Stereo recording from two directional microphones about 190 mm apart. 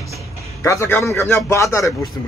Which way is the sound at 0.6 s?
15° left (ahead or behind).